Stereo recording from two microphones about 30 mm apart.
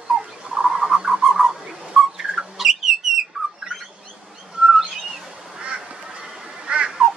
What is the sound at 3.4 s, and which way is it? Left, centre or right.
Bird, centre.